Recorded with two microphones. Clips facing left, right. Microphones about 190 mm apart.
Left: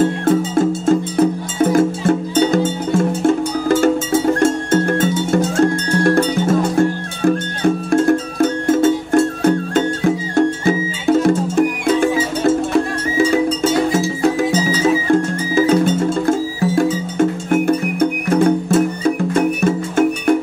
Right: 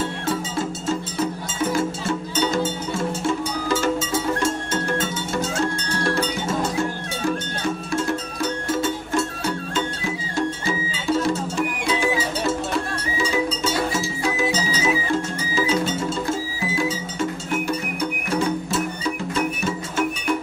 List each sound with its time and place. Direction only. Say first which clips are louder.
0.0 s music: left 10 dB; 50° left (ahead or behind)